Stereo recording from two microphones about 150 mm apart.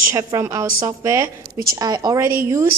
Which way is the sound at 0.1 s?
20° right (ahead or behind).